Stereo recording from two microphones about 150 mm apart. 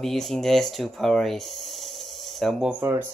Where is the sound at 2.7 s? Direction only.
15° right (ahead or behind).